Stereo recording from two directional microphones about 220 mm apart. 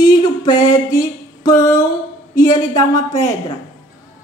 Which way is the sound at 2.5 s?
15° left (ahead or behind).